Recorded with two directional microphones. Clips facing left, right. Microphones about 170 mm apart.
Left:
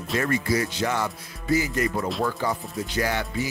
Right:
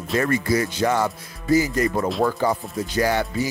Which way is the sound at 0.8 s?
45° right (ahead or behind).